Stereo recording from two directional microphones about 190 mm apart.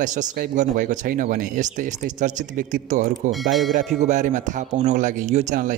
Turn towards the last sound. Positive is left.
turn(degrees=-40)  # may be behind; listen again after turning